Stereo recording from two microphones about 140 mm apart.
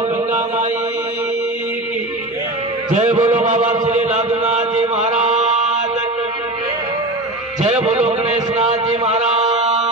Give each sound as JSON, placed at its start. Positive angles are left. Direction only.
{"t": 2.9, "sound": "chant", "side_deg": -60}
{"t": 8.5, "sound": "mantra", "side_deg": -55}